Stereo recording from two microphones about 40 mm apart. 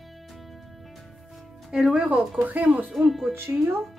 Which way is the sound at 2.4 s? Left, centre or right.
Right.